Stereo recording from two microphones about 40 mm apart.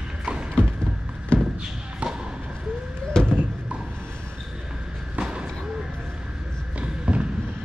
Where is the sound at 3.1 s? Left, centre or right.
Left.